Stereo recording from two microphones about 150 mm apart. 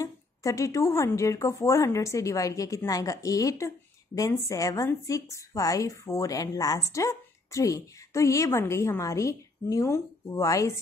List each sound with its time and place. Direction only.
0.0 s speech: 20° left (ahead or behind)